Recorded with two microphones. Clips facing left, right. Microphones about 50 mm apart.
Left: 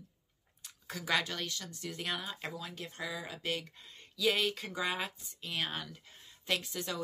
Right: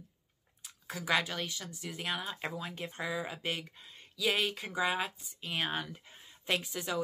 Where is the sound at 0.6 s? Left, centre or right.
Centre.